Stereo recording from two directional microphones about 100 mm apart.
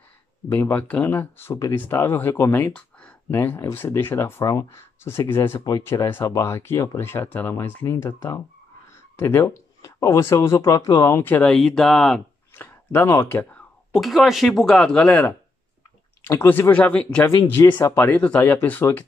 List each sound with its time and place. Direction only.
0.5 s speech: 20° left (ahead or behind)
5.6 s speech: 35° left (ahead or behind)
9.2 s speech: 20° left (ahead or behind)
9.8 s speech: 35° left (ahead or behind)
11.4 s speech: 5° left (ahead or behind)
12.5 s speech: 20° left (ahead or behind)
13.9 s speech: centre (ahead or behind)
16.3 s speech: 20° left (ahead or behind)
17.6 s speech: 20° left (ahead or behind)